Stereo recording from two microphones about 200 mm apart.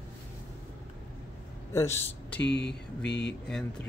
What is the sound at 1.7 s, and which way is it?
Speech, 15° left (ahead or behind).